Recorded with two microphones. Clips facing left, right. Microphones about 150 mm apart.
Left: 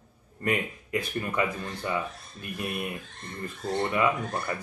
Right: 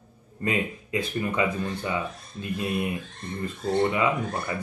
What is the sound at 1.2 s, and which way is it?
Speech, 15° right (ahead or behind).